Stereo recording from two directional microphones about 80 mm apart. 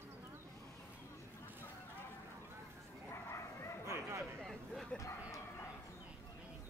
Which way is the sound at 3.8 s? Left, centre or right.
Right.